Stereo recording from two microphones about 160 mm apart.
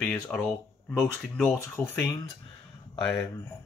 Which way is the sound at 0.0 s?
5° left (ahead or behind).